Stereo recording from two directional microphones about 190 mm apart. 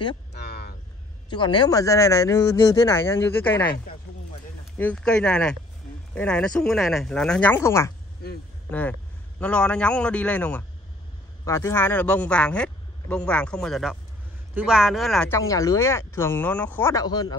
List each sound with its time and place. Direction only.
0.3 s vehicle: 60° left (ahead or behind)
1.3 s speech: 25° left (ahead or behind)
4.7 s speech: 5° left (ahead or behind)
15.2 s speech: 15° left (ahead or behind)